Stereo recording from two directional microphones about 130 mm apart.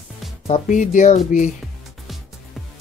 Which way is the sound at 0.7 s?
80° left.